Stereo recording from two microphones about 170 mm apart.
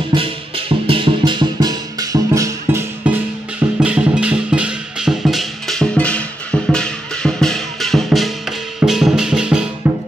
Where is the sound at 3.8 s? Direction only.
5° right (ahead or behind).